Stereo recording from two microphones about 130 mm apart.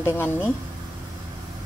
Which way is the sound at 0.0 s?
15° left (ahead or behind).